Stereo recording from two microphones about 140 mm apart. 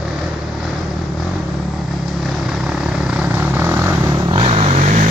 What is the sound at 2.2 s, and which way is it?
Vehicle, 5° right (ahead or behind).